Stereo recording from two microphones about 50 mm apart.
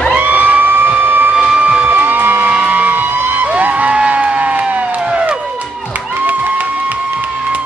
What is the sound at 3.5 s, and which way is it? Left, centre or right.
Crowd, right.